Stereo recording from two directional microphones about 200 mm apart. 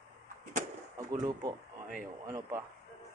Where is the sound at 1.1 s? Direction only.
20° right (ahead or behind).